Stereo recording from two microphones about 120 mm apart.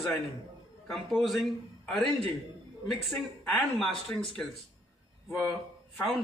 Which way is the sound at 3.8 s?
5° left (ahead or behind).